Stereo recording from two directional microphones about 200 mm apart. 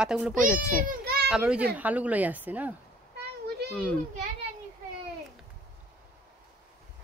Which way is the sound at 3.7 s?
5° left (ahead or behind).